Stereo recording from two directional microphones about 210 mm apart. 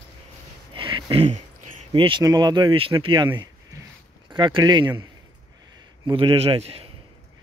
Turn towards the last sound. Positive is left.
turn(degrees=-25)  # may be behind; listen again after turning